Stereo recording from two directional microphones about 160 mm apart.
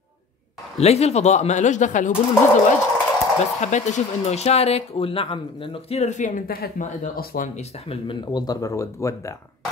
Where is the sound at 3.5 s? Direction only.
50° left (ahead or behind).